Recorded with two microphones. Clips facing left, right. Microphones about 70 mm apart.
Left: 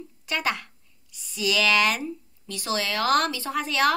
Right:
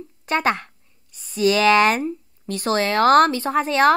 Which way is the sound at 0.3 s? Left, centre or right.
Right.